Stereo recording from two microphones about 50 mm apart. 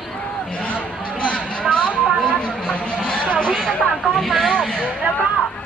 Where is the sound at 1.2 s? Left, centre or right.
Left.